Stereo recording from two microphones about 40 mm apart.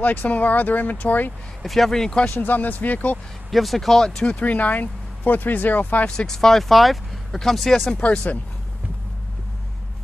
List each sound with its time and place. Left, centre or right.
0.0 s speech: left
1.6 s speech: centre
2.3 s speech: left
3.4 s speech: centre
4.0 s speech: centre
4.4 s speech: left
6.0 s speech: centre